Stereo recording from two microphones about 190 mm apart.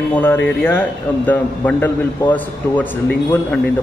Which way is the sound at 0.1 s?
10° left (ahead or behind).